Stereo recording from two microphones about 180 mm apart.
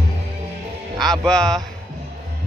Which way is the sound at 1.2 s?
5° left (ahead or behind).